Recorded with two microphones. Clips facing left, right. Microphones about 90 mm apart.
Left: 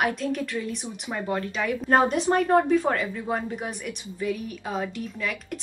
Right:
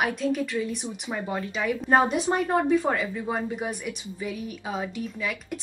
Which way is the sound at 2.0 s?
15° right (ahead or behind).